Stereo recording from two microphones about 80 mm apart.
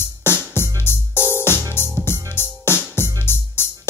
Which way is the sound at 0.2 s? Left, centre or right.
Left.